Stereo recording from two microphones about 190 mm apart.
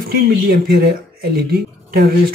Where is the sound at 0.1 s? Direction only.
55° right (ahead or behind).